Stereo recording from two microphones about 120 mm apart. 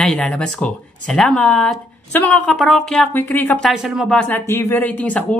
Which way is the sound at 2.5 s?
Centre (ahead or behind).